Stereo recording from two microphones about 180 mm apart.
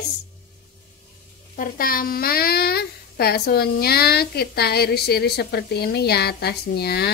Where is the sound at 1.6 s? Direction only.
55° left (ahead or behind).